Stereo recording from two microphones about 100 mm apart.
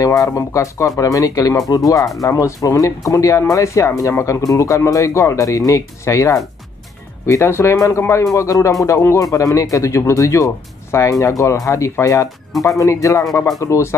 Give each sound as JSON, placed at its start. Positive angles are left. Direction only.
{"t": 0.0, "sound": "speech", "side_deg": 35}